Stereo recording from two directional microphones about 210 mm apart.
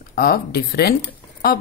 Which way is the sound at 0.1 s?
45° left (ahead or behind).